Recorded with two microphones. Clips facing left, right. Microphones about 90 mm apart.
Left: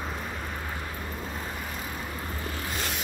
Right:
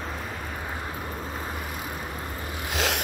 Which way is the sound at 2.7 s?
90° right.